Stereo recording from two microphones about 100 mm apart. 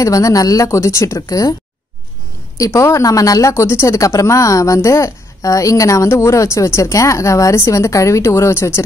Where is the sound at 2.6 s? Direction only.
30° left (ahead or behind).